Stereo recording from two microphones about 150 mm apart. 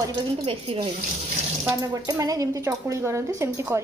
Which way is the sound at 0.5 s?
35° right (ahead or behind).